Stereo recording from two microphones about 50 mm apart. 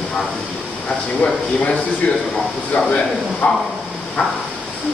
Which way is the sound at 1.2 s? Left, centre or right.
Left.